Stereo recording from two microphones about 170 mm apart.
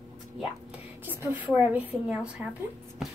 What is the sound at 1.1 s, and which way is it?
A woman's voice, 10° right (ahead or behind).